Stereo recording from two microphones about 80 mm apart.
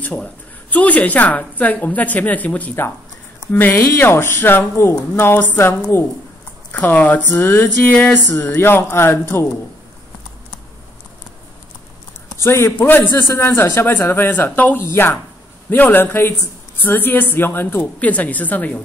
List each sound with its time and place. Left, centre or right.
0.0 s a woman's voice: centre
7.4 s music: left
7.9 s a woman's voice: left
12.4 s music: left
12.7 s a woman's voice: left
13.3 s a woman's voice: left
14.9 s music: left
15.7 s a woman's voice: left